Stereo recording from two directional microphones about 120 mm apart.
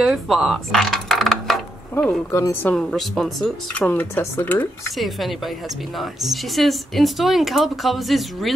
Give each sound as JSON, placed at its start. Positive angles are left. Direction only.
{"t": 0.0, "sound": "coin", "side_deg": 0}
{"t": 2.3, "sound": "a woman's voice", "side_deg": 25}
{"t": 2.6, "sound": "speech", "side_deg": 5}
{"t": 4.9, "sound": "speech", "side_deg": 0}